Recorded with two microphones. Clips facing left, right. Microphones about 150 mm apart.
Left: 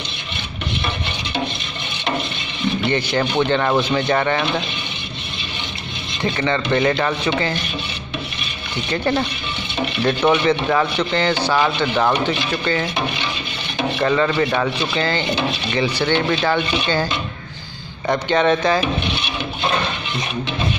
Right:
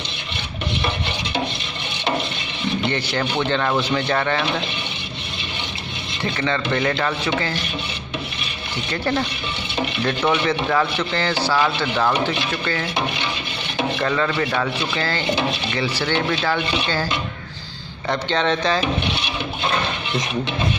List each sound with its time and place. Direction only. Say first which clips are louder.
2.9 s speech: left 3 dB; 15° left (ahead or behind)
6.2 s speech: left 3 dB; 15° left (ahead or behind)
8.9 s speech: left 3 dB; 15° left (ahead or behind)
14.0 s speech: left 6 dB; 15° left (ahead or behind)
18.0 s speech: left 4 dB; 15° left (ahead or behind)